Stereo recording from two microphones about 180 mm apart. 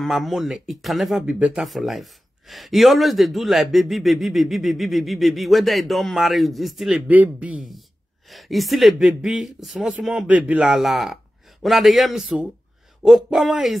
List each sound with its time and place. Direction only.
0.0 s speech: centre (ahead or behind)